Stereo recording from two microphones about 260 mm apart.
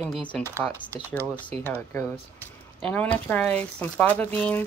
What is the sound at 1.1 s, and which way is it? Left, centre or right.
Speech, centre.